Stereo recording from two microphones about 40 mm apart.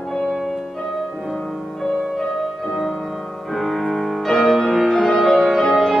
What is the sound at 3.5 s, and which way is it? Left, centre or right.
Music, centre.